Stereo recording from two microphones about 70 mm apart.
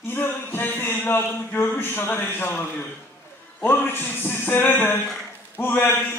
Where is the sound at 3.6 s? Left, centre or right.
Left.